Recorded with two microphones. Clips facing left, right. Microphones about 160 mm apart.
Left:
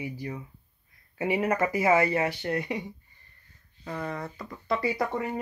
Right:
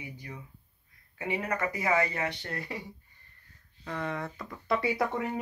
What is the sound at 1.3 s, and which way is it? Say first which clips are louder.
Speech: left 6 dB; 25° left (ahead or behind).